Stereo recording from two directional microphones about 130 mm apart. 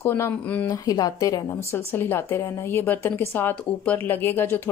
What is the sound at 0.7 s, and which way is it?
Speech, 30° left (ahead or behind).